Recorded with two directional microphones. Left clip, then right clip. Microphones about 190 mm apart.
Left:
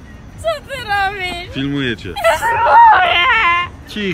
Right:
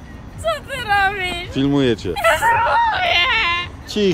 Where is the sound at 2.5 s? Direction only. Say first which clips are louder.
Left 4 dB; 40° left (ahead or behind).